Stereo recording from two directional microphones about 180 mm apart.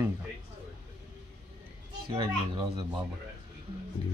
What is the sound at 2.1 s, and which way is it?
Speech, 25° right (ahead or behind).